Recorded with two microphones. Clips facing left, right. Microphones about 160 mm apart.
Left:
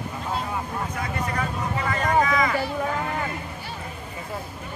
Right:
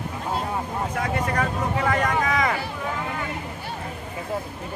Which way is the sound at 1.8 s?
65° right (ahead or behind).